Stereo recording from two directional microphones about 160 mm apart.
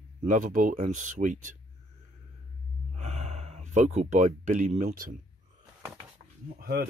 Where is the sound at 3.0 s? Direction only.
45° right (ahead or behind).